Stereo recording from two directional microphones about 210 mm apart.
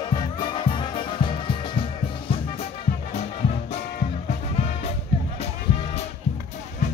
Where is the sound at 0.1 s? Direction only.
20° left (ahead or behind).